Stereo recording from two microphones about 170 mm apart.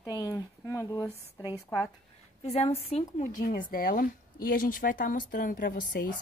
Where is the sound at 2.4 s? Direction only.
40° left (ahead or behind); by 6.0 s 55° left (ahead or behind).